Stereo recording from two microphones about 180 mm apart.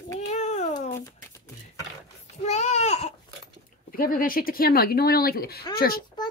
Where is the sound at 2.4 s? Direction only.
40° left (ahead or behind).